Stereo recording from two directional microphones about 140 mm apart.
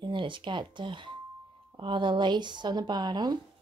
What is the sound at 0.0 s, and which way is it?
Speech, 35° right (ahead or behind).